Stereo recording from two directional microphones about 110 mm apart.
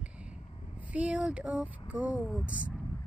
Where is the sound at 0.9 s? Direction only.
10° right (ahead or behind).